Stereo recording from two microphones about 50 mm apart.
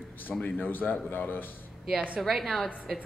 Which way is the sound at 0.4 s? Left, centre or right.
Left.